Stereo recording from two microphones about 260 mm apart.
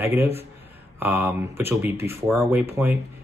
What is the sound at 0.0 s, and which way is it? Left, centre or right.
Speech, centre.